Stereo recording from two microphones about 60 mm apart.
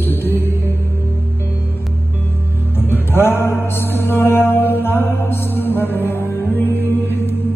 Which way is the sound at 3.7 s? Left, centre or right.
Left.